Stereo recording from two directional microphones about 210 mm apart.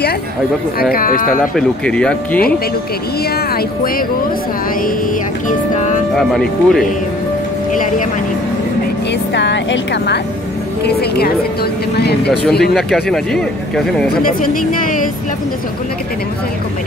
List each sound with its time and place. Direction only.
0.9 s speech: 40° left (ahead or behind)
1.4 s speech: centre (ahead or behind)
5.5 s music: 35° left (ahead or behind)
6.1 s speech: centre (ahead or behind)
9.3 s a woman's voice: 60° left (ahead or behind)
12.7 s speech: centre (ahead or behind)
14.0 s speech: 40° left (ahead or behind)